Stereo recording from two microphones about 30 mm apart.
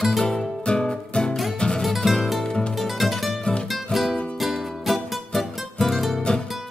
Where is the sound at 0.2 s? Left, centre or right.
Left.